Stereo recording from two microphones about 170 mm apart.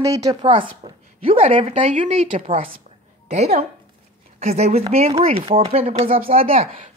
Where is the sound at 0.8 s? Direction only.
35° right (ahead or behind).